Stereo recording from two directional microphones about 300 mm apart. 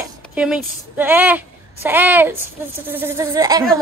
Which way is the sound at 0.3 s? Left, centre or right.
Centre.